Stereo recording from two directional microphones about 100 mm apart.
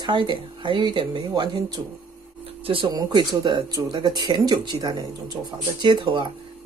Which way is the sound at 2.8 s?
45° right (ahead or behind).